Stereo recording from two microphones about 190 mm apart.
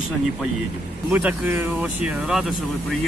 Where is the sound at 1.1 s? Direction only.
10° right (ahead or behind).